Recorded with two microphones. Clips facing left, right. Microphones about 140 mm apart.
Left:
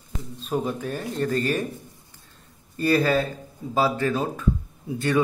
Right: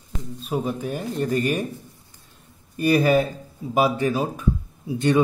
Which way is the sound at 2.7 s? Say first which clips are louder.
Right 3 dB; 15° right (ahead or behind).